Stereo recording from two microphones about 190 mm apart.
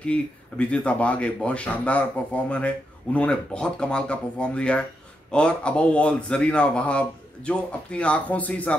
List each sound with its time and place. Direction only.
0.0 s speech: 5° left (ahead or behind)